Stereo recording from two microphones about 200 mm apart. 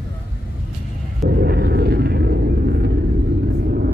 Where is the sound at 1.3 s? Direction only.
55° right (ahead or behind).